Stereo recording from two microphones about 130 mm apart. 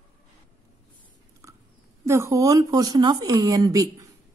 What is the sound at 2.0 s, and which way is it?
Speech, 25° right (ahead or behind).